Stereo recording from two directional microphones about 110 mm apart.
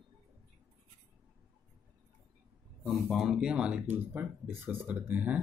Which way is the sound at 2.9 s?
Centre (ahead or behind).